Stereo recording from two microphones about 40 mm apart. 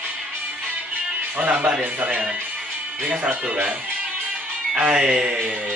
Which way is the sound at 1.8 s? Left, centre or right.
Right.